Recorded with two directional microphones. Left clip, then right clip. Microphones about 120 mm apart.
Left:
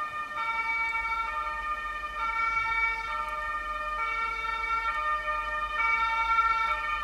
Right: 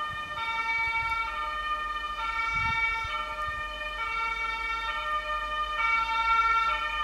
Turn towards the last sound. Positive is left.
turn(degrees=-15)  # may be behind; listen again after turning